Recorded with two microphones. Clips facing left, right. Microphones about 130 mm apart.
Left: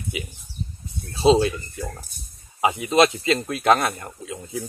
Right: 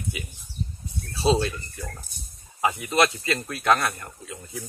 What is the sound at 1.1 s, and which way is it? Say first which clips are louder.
Speech: left 6 dB; 20° left (ahead or behind).